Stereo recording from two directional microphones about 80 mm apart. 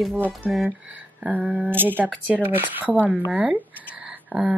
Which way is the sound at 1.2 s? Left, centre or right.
Centre.